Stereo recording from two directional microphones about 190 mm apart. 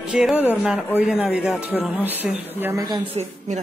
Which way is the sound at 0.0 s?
5° right (ahead or behind).